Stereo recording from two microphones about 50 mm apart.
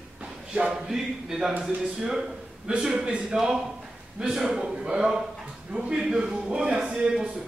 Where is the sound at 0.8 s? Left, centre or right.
Centre.